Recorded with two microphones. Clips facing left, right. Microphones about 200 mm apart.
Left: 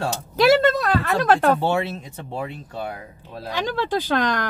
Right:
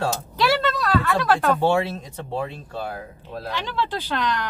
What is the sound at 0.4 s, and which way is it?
Speech, 45° left (ahead or behind).